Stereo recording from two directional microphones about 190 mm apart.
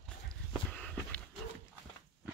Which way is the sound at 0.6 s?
5° left (ahead or behind).